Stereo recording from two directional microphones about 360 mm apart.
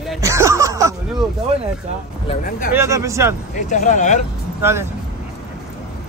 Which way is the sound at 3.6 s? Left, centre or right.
Left.